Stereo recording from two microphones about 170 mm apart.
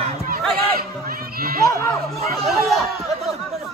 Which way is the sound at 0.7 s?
60° right (ahead or behind).